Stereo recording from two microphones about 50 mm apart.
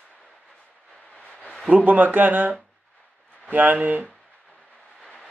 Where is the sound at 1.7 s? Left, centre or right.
Right.